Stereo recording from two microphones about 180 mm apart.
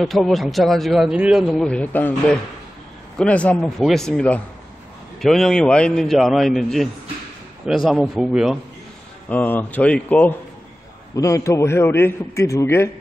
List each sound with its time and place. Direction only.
0.0 s speech: centre (ahead or behind)
9.3 s a man's voice: 10° left (ahead or behind)